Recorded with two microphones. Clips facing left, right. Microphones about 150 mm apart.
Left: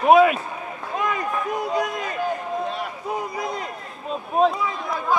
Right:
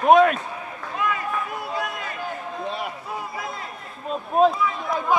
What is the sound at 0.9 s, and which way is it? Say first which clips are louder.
Run: left 1 dB; 20° left (ahead or behind).